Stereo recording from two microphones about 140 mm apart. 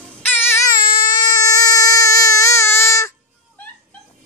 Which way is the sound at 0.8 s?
25° left (ahead or behind).